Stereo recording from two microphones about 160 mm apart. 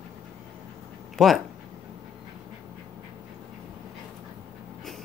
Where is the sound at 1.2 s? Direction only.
Centre (ahead or behind).